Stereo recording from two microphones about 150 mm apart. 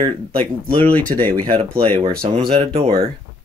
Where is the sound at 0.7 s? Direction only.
10° left (ahead or behind).